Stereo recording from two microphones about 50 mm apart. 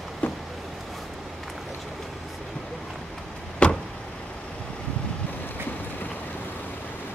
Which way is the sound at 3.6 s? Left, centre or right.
Left.